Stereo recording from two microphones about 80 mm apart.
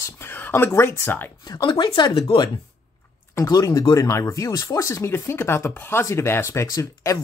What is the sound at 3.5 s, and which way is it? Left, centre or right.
Speech, left.